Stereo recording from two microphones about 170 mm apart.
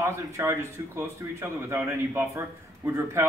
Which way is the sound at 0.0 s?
15° right (ahead or behind).